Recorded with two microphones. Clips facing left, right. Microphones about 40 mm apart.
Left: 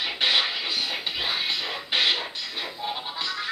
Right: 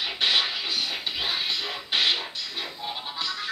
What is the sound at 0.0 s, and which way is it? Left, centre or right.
Music, centre.